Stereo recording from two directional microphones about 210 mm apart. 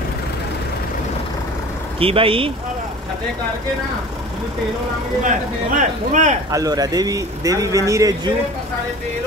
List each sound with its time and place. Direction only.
2.0 s speech: 25° right (ahead or behind)
5.2 s speech: 35° right (ahead or behind)
6.5 s speech: 15° right (ahead or behind)